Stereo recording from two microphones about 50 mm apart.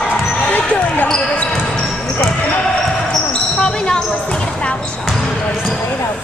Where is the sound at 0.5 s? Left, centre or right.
Left.